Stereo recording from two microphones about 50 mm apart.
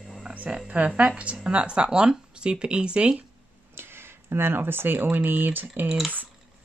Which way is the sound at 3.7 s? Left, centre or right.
Right.